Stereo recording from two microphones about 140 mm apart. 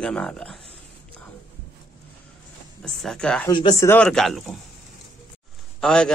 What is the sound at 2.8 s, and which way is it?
Speech, 5° left (ahead or behind).